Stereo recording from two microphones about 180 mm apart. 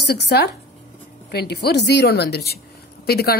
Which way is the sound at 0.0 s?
65° left (ahead or behind).